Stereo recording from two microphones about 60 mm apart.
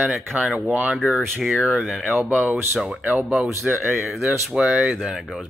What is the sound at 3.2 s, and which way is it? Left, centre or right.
Speech, centre.